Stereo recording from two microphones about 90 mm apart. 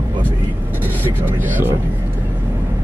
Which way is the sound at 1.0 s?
25° right (ahead or behind).